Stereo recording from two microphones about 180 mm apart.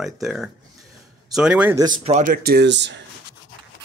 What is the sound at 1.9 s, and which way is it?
Speech, 45° right (ahead or behind).